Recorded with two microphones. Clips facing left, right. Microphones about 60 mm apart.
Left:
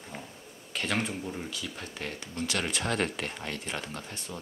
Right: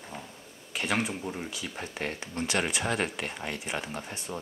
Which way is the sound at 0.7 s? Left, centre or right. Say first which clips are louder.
Right 1 dB; centre.